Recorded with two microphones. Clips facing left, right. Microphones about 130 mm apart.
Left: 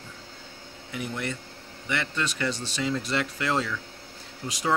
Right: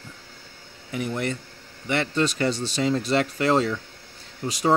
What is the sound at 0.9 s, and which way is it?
Speech, 40° right (ahead or behind).